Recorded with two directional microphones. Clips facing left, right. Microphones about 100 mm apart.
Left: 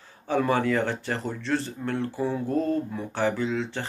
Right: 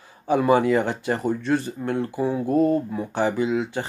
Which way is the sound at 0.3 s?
15° right (ahead or behind).